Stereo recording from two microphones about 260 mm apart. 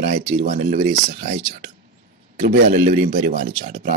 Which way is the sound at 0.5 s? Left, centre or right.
Right.